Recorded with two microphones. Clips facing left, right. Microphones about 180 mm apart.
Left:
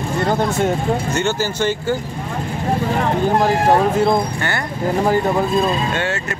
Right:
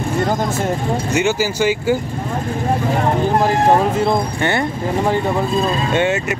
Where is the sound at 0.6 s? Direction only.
5° right (ahead or behind).